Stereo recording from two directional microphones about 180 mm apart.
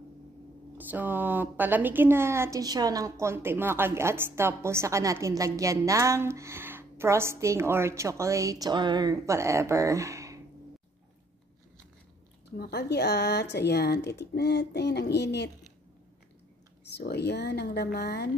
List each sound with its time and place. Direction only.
0.7 s a woman's voice: 10° right (ahead or behind)
12.5 s speech: 60° left (ahead or behind)
16.9 s speech: 65° left (ahead or behind)